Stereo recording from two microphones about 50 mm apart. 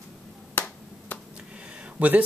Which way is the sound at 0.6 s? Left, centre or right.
Left.